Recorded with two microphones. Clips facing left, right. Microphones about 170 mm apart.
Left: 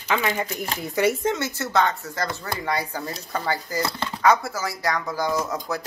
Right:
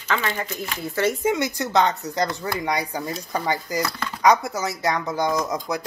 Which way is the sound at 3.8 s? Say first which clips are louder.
Even; 25° left (ahead or behind).